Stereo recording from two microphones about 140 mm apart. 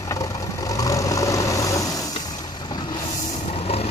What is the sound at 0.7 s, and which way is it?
Vehicle, 25° left (ahead or behind).